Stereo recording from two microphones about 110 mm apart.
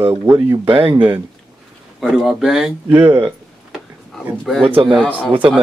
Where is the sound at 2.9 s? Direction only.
20° right (ahead or behind).